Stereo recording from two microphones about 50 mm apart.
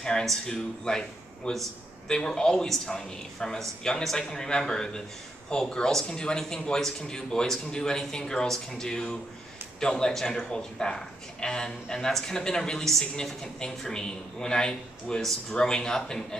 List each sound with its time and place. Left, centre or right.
0.0 s a woman's voice: centre